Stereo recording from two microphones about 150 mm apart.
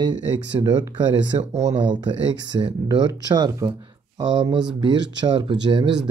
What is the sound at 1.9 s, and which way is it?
Speech, 30° right (ahead or behind).